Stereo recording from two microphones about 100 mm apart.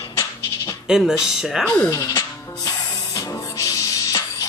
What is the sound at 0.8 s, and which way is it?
Speech, 5° right (ahead or behind).